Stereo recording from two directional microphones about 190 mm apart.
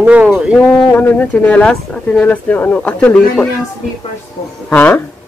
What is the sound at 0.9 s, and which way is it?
Speech, 10° left (ahead or behind).